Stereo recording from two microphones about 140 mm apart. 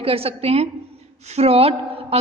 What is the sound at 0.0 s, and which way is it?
A woman's voice, 45° right (ahead or behind).